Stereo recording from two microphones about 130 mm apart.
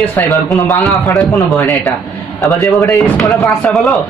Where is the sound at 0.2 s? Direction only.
15° left (ahead or behind).